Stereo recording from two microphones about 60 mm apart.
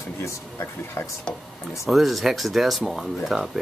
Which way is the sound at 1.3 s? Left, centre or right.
Centre.